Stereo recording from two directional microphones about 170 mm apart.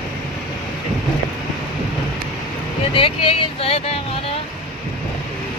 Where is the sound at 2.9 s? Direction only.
30° left (ahead or behind).